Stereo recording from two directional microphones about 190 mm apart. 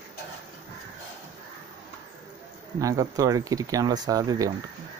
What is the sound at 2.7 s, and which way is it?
Speech, 15° right (ahead or behind).